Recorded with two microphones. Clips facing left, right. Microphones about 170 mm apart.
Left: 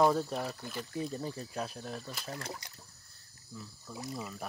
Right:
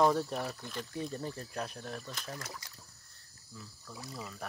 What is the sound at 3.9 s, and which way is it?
Speech, 20° left (ahead or behind).